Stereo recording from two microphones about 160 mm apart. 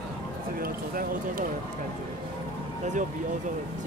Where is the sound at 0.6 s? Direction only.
65° right (ahead or behind).